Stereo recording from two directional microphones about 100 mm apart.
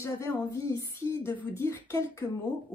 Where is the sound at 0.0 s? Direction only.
30° left (ahead or behind).